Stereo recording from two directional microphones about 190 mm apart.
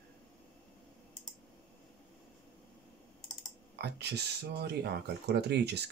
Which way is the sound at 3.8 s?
60° right (ahead or behind).